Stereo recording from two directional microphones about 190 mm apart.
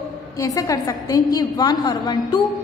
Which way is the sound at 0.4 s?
20° left (ahead or behind).